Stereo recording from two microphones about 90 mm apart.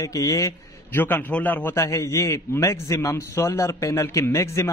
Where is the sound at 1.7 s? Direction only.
35° left (ahead or behind).